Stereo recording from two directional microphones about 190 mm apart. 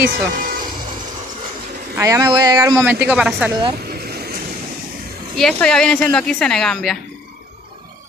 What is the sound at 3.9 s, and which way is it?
Vehicle, 55° right (ahead or behind).